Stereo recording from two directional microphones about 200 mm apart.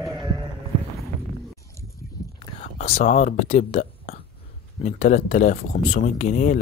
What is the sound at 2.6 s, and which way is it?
Speech, 30° left (ahead or behind).